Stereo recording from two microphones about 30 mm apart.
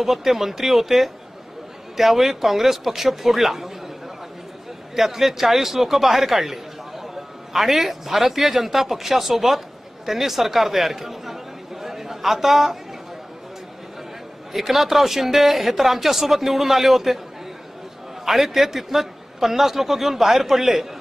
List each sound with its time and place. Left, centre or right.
0.0 s a man's voice: centre
4.9 s a man's voice: centre
14.5 s a man's voice: centre
18.2 s a man's voice: centre